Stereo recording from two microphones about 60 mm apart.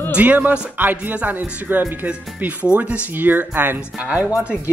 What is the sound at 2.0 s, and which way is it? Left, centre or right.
Speech, right.